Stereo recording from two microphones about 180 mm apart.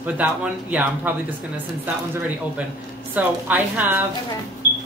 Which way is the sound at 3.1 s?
10° right (ahead or behind).